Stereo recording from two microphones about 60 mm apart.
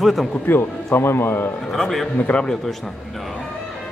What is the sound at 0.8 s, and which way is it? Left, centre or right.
Speech, left.